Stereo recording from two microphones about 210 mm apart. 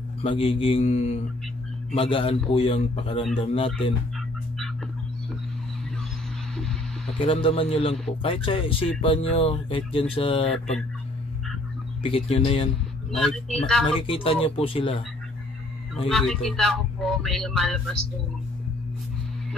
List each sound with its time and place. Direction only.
0.2 s speech: 25° left (ahead or behind)
7.2 s speech: 25° left (ahead or behind)
12.0 s speech: 25° left (ahead or behind)
13.2 s speech: centre (ahead or behind)
14.0 s speech: 25° left (ahead or behind)
16.1 s speech: centre (ahead or behind)